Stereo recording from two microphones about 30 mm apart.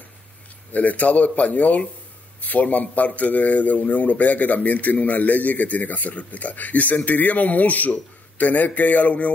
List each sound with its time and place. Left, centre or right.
0.7 s speech: left